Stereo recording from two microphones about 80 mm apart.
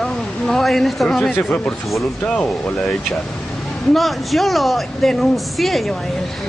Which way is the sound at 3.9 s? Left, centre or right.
Centre.